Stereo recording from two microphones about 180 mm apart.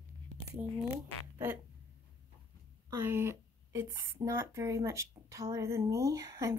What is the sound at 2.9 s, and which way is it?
Speech, 10° right (ahead or behind).